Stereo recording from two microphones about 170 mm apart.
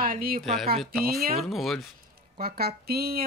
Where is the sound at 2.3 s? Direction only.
60° right (ahead or behind).